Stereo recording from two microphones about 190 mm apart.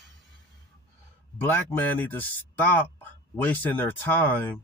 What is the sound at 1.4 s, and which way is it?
Speech, 10° left (ahead or behind).